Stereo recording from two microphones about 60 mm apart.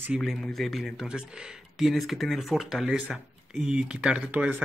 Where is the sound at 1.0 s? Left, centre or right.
Centre.